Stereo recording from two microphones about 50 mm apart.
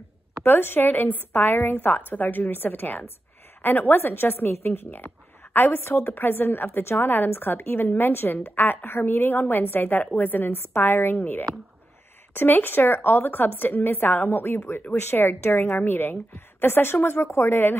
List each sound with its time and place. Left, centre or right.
0.4 s a woman's voice: left